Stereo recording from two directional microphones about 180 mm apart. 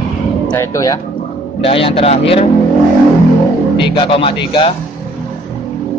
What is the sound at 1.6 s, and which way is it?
Speech, 30° left (ahead or behind).